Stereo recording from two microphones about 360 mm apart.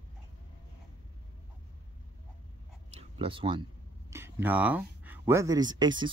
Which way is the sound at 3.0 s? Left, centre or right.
Centre.